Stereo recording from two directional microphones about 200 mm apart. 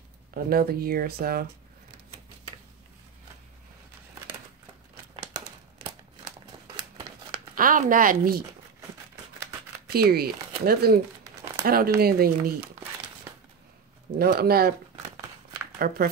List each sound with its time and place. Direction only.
0.3 s speech: 50° right (ahead or behind)
5.1 s crumpling: 20° right (ahead or behind)
7.5 s speech: 45° right (ahead or behind)
9.9 s speech: 50° right (ahead or behind)
14.1 s speech: 50° right (ahead or behind)
15.8 s speech: 50° right (ahead or behind)